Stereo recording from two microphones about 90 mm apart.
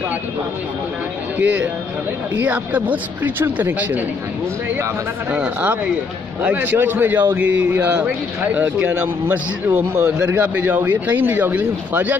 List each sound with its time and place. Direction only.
1.4 s a man's voice: 15° right (ahead or behind)
5.3 s a man's voice: 15° right (ahead or behind)